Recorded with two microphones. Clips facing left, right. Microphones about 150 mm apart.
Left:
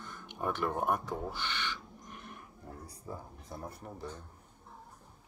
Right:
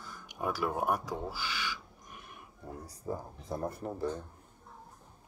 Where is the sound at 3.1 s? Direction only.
35° right (ahead or behind).